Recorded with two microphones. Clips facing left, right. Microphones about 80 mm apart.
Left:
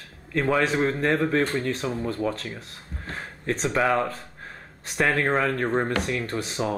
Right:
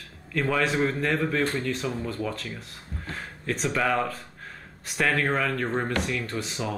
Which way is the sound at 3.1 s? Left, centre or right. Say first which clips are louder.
Left 3 dB; left.